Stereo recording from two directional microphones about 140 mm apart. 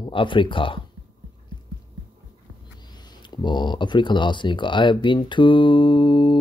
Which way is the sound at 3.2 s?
30° left (ahead or behind).